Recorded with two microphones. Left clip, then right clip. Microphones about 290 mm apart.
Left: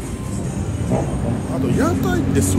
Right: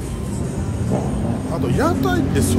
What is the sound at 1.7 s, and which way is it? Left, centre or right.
Speech, centre.